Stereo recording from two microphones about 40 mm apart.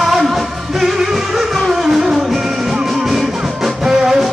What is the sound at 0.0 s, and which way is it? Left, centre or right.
Music, centre.